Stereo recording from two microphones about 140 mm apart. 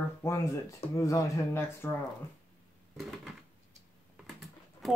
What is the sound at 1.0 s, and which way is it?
Speech, 20° left (ahead or behind).